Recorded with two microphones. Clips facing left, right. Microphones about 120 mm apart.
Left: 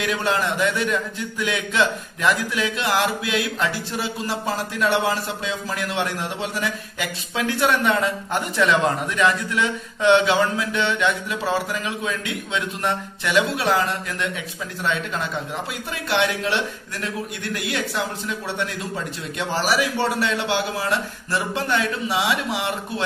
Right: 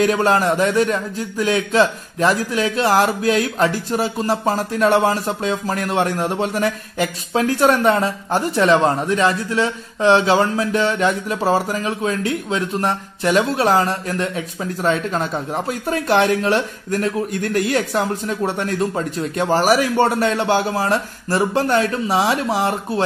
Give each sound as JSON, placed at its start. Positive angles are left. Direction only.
{"t": 0.0, "sound": "a man's voice", "side_deg": -40}